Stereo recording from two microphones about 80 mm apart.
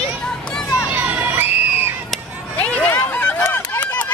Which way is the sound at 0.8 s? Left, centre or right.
Centre.